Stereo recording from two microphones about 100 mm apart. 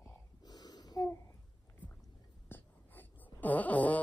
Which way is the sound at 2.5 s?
20° left (ahead or behind).